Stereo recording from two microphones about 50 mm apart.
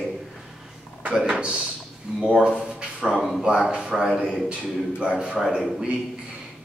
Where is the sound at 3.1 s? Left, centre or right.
Centre.